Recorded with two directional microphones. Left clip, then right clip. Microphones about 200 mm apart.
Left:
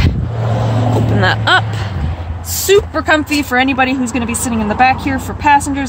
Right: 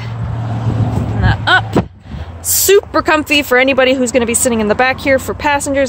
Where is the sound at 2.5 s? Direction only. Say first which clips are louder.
Right 1 dB; 60° right (ahead or behind).